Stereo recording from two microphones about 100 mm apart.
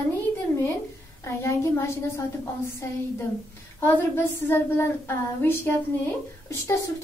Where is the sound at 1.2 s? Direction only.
25° left (ahead or behind).